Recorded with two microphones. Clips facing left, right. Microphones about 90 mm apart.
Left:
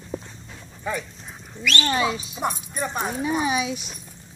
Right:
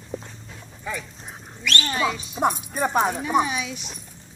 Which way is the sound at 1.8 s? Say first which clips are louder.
Left 2 dB; 10° left (ahead or behind).